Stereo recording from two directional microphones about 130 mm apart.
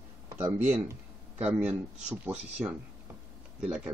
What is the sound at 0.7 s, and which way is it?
Speech, 15° right (ahead or behind).